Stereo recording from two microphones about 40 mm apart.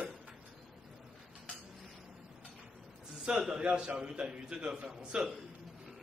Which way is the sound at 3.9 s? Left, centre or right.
Right.